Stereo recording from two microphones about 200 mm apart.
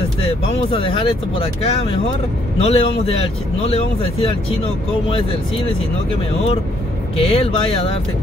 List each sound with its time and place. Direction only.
0.7 s speech: 25° left (ahead or behind)
7.2 s speech: 30° left (ahead or behind)